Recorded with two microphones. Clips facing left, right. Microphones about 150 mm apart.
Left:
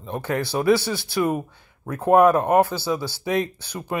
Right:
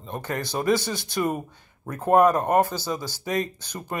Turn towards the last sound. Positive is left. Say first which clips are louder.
# left 3 dB
turn(degrees=10)  # may be behind; listen again after turning